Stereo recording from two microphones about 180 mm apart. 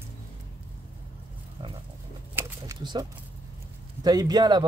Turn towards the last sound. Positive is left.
turn(degrees=-25)  # may be behind; listen again after turning